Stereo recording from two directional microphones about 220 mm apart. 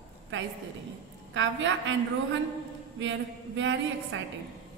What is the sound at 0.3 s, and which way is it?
A woman's voice, 60° right (ahead or behind).